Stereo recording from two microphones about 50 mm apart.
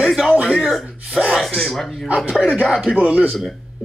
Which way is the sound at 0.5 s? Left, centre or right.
Centre.